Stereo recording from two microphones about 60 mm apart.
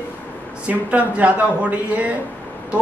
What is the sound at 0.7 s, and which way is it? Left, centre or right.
A man's voice, right.